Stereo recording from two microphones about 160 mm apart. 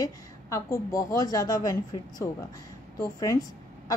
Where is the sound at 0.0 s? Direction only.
20° left (ahead or behind).